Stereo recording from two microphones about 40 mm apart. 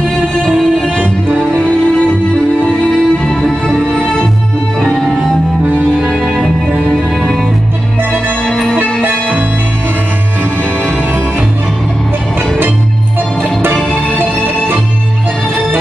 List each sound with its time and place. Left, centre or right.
2.8 s music: left
5.6 s music: right
6.2 s music: centre
8.5 s music: centre
13.4 s music: right